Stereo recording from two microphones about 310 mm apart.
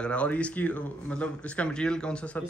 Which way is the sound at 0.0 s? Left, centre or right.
Centre.